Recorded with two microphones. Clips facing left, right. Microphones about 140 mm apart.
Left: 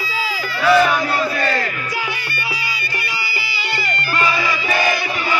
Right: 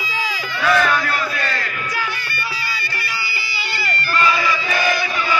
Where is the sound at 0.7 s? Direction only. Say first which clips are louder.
Left 4 dB; 10° left (ahead or behind).